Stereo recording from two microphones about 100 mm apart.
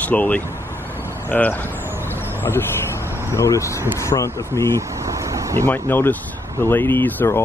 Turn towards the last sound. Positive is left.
turn(degrees=20)  # may be behind; listen again after turning